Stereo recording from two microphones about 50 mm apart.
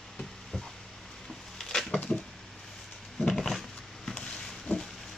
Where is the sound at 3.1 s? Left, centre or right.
Centre.